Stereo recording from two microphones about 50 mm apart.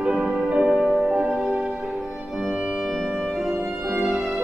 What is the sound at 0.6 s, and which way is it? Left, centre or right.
Music, centre.